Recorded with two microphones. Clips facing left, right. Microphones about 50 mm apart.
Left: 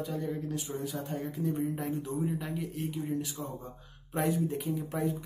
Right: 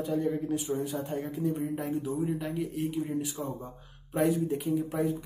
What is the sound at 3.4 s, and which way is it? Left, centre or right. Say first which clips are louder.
Speech: right 4 dB; right.